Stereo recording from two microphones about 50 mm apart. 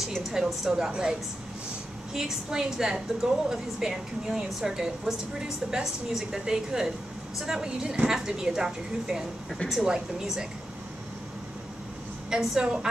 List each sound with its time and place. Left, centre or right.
0.0 s a woman's voice: centre
2.1 s a woman's voice: centre
12.3 s a woman's voice: centre